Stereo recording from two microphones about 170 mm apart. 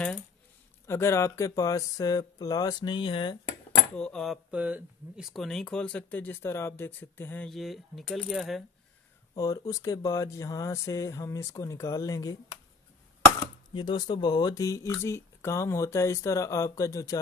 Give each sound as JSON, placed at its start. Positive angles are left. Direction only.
{"t": 0.8, "sound": "speech", "side_deg": 15}
{"t": 3.9, "sound": "speech", "side_deg": 5}
{"t": 9.3, "sound": "speech", "side_deg": 20}
{"t": 13.7, "sound": "speech", "side_deg": 25}